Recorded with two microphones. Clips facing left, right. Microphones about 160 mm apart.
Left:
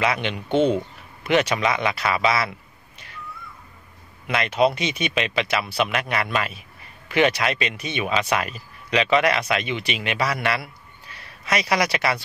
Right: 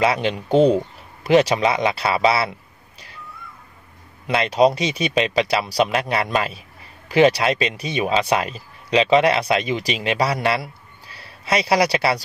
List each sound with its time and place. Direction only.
0.0 s speech: 30° right (ahead or behind)
4.3 s speech: 30° right (ahead or behind)